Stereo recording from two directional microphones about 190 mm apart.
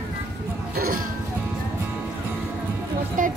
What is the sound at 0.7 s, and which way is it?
Cough, 50° right (ahead or behind).